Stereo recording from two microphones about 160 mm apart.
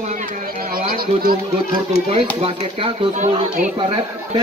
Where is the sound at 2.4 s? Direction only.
35° right (ahead or behind).